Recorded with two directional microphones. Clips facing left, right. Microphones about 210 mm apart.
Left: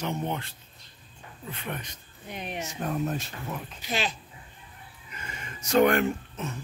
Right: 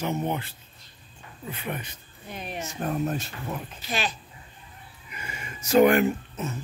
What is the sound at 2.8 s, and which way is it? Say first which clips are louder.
Speech: right 2 dB; centre (ahead or behind).